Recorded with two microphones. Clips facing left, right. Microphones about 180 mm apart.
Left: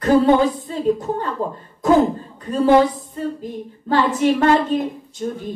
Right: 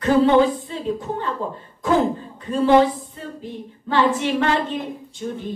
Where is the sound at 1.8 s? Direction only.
40° left (ahead or behind).